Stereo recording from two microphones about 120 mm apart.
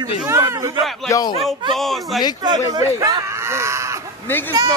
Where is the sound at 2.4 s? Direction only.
35° right (ahead or behind).